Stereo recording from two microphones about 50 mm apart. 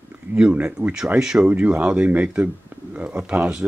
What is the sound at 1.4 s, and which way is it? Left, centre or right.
Speech, right.